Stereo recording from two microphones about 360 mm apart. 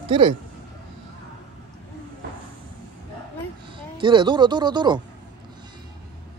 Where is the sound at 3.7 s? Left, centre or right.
Centre.